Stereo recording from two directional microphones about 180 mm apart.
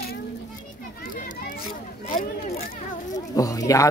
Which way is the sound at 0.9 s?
50° left (ahead or behind).